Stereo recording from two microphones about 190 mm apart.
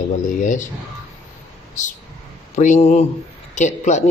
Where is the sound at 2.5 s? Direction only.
40° left (ahead or behind).